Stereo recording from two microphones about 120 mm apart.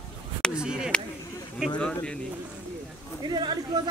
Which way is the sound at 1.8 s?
10° left (ahead or behind).